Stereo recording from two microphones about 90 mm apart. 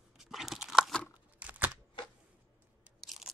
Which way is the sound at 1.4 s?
15° right (ahead or behind).